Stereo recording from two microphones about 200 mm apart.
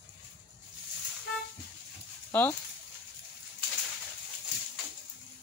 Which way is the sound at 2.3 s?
10° left (ahead or behind).